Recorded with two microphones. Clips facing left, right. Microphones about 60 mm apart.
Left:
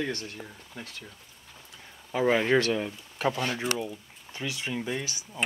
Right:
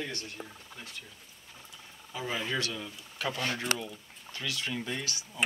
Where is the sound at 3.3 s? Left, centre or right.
Centre.